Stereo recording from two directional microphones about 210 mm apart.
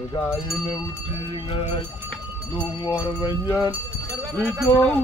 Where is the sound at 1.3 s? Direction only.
25° left (ahead or behind).